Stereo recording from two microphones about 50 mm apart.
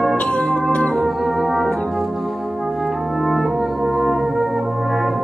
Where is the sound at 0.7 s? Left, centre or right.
Left.